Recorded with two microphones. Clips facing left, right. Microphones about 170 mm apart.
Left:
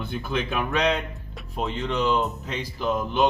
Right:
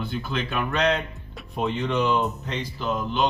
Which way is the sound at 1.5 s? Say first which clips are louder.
Right 2 dB; centre (ahead or behind).